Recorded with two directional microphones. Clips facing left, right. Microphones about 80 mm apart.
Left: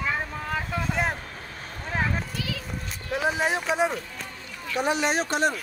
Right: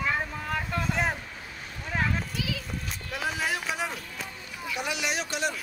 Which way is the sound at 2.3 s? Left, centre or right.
Centre.